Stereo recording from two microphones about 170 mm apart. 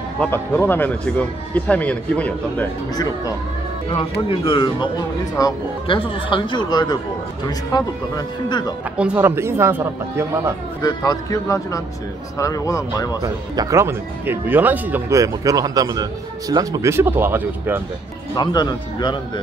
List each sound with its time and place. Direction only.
0.2 s speech: 10° left (ahead or behind)
3.9 s speech: 30° left (ahead or behind)
8.9 s speech: 5° right (ahead or behind)
10.8 s speech: 25° left (ahead or behind)
13.2 s speech: 20° right (ahead or behind)
18.3 s speech: 25° left (ahead or behind)